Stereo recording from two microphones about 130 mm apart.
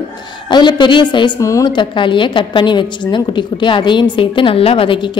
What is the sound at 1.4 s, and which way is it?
A woman's voice, 25° left (ahead or behind).